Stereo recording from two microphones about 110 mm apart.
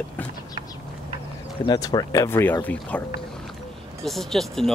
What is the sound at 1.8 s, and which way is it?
Speech, 35° left (ahead or behind).